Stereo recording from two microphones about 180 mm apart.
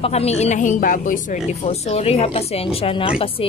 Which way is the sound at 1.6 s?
35° left (ahead or behind).